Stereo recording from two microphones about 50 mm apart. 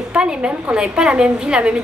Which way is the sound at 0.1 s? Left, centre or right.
Right.